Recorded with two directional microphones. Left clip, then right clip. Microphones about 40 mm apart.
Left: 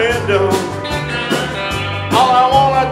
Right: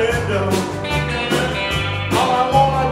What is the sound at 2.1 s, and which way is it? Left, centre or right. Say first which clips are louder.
Music: left 6 dB; left.